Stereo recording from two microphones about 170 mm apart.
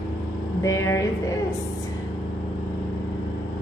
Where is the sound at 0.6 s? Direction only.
15° left (ahead or behind).